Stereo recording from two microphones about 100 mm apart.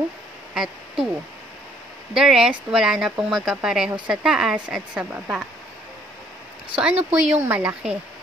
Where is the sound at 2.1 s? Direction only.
5° right (ahead or behind).